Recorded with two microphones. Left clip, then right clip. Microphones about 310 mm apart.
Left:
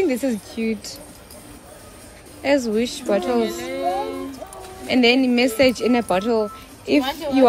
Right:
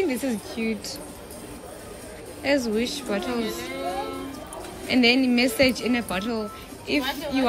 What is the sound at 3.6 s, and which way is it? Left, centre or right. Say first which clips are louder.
Music: left 6 dB; left.